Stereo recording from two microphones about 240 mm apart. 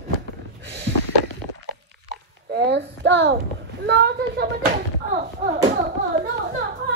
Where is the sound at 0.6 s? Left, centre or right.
Right.